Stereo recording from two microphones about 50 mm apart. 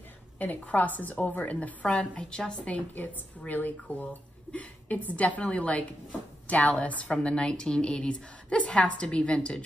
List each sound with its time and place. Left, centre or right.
0.4 s a woman's voice: left
1.9 s a woman's voice: centre
3.0 s a woman's voice: left; by 9.6 s centre